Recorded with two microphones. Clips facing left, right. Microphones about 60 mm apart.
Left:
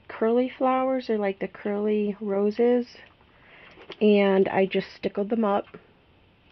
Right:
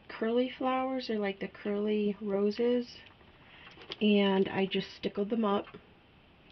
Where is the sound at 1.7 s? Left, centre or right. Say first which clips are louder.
Left 5 dB; left.